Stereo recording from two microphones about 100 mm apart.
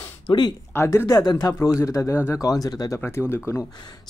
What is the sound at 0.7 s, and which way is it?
Speech, 30° left (ahead or behind).